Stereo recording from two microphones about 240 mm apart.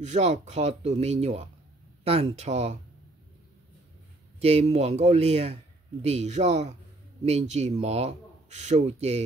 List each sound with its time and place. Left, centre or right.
0.0 s speech: right
4.4 s speech: right